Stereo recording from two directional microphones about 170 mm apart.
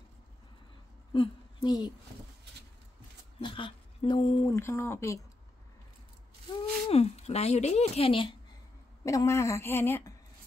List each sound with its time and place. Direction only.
1.1 s speech: 30° left (ahead or behind)
3.3 s speech: 30° left (ahead or behind)
4.6 s a woman's voice: 15° left (ahead or behind)
6.9 s speech: 35° left (ahead or behind)
9.0 s a woman's voice: 20° left (ahead or behind)